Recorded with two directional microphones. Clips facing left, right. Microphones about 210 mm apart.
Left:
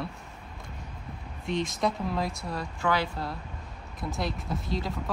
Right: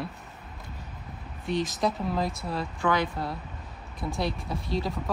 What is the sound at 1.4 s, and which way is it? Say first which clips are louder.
Speech: right 1 dB; 5° right (ahead or behind).